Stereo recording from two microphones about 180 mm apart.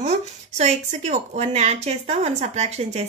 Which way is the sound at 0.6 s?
40° right (ahead or behind).